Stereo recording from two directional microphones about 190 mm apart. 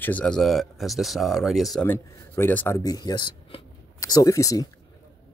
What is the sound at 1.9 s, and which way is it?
Speech, 10° left (ahead or behind).